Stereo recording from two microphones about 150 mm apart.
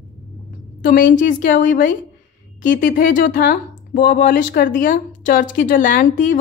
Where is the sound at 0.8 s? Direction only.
65° left (ahead or behind).